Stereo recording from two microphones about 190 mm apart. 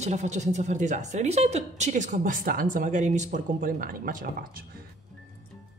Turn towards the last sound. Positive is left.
turn(degrees=-45)  # may be behind; listen again after turning